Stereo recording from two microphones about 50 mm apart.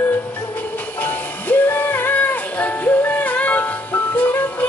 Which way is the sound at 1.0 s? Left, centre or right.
Left.